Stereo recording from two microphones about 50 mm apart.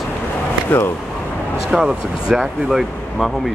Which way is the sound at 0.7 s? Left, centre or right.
Left.